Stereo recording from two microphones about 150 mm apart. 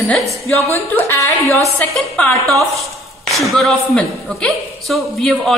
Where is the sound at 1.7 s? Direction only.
5° left (ahead or behind).